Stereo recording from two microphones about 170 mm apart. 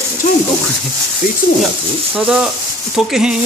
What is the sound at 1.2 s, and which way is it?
Speech, 60° left (ahead or behind).